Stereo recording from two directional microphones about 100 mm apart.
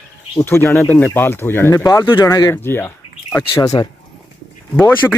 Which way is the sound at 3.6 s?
40° left (ahead or behind).